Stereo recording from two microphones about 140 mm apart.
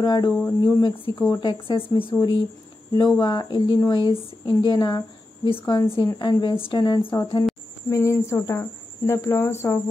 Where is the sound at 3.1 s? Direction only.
30° left (ahead or behind).